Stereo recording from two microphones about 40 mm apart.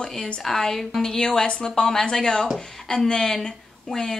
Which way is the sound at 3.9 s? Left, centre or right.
Centre.